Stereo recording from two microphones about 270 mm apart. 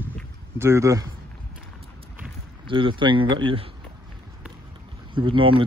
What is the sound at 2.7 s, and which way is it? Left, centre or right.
A man's voice, centre.